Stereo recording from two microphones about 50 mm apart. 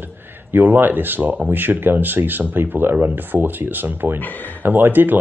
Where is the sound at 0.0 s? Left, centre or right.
Right.